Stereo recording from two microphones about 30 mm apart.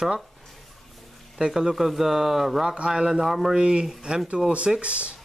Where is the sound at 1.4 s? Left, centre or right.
Right.